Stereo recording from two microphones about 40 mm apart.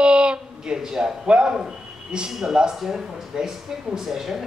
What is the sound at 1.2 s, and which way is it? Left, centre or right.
Speech, right.